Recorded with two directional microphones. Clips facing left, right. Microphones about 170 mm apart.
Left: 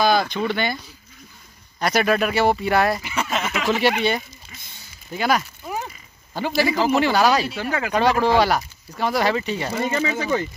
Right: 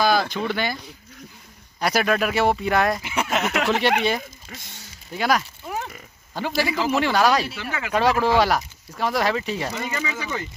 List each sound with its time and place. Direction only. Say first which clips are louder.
0.0 s speech: left 2 dB; 5° right (ahead or behind)
1.8 s speech: left 2 dB; 5° right (ahead or behind)
3.0 s speech: right 1 dB; 15° right (ahead or behind)
3.8 s speech: left 1 dB; 5° left (ahead or behind)
4.5 s a sound: right 5 dB; 80° right
5.1 s a sound: left 1 dB; centre (ahead or behind)
6.3 s speech: left 3 dB; centre (ahead or behind)
7.5 s speech: left 6 dB; 40° left (ahead or behind)
7.9 s speech: left 1 dB; centre (ahead or behind)
9.8 s speech: left 6 dB; 35° left (ahead or behind)